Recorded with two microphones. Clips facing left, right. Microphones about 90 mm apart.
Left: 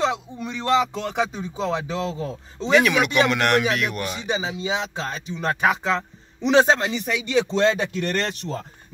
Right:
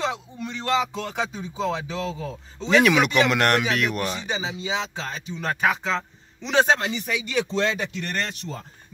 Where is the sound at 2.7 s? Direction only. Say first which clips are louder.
Even; centre (ahead or behind).